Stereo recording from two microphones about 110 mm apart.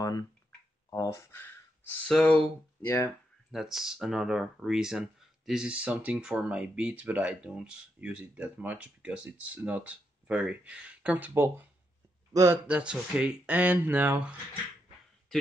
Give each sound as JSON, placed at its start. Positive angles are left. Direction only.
{"t": 0.8, "sound": "speech", "side_deg": 30}
{"t": 1.3, "sound": "a sound", "side_deg": 15}
{"t": 2.0, "sound": "speech", "side_deg": 5}
{"t": 3.5, "sound": "speech", "side_deg": -5}
{"t": 12.6, "sound": "speech", "side_deg": -10}